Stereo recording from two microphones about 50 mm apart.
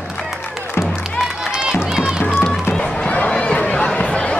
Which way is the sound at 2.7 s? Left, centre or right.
Centre.